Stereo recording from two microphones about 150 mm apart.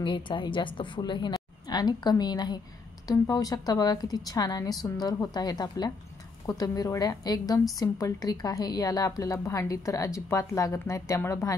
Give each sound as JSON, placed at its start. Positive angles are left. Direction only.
{"t": 0.0, "sound": "a woman's voice", "side_deg": 30}